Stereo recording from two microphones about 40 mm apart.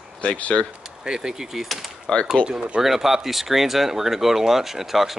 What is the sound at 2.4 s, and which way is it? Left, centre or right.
Speech, left.